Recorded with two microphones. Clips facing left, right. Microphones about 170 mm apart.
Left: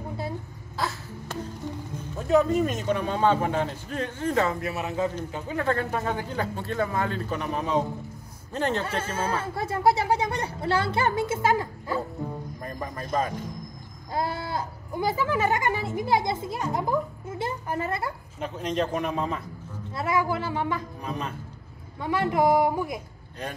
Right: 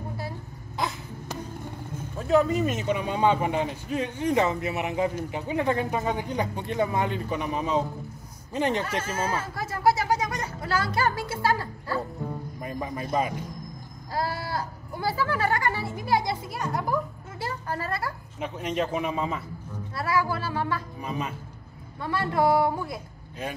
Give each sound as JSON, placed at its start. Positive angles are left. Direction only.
{"t": 0.8, "sound": "a sound", "side_deg": -20}
{"t": 2.1, "sound": "a man's voice", "side_deg": 0}
{"t": 8.8, "sound": "speech", "side_deg": 30}
{"t": 12.6, "sound": "a man's voice", "side_deg": -10}
{"t": 14.1, "sound": "speech", "side_deg": 20}
{"t": 18.4, "sound": "a man's voice", "side_deg": -10}
{"t": 19.9, "sound": "speech", "side_deg": 20}
{"t": 21.0, "sound": "a man's voice", "side_deg": -5}
{"t": 22.0, "sound": "a man's voice", "side_deg": 15}